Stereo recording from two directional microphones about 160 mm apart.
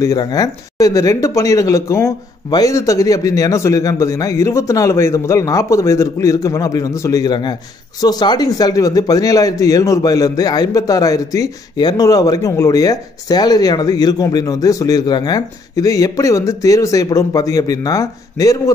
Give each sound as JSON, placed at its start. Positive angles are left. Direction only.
{"t": 0.0, "sound": "a man's voice", "side_deg": 25}